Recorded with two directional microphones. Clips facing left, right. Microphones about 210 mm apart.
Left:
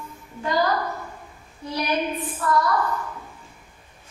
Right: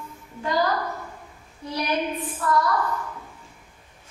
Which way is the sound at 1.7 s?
15° left (ahead or behind).